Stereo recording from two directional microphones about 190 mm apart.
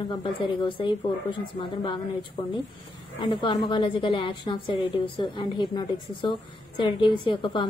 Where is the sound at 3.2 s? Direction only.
25° left (ahead or behind).